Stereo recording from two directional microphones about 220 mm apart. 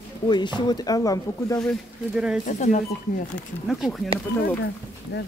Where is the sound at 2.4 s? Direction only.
35° left (ahead or behind).